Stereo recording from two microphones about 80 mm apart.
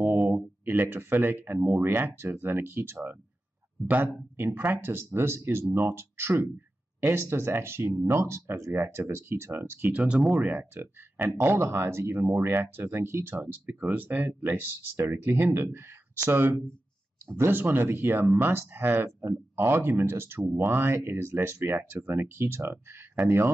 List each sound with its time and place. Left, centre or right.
0.3 s speech: right
9.8 s speech: centre; by 23.5 s right